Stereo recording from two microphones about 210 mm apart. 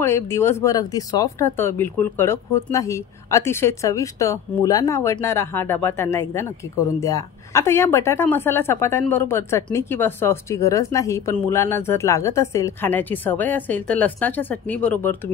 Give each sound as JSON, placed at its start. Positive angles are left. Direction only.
{"t": 0.0, "sound": "speech", "side_deg": 10}